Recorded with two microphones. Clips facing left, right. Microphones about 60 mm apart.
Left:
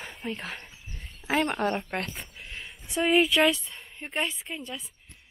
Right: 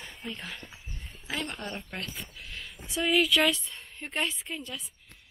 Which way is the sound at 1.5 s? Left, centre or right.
Left.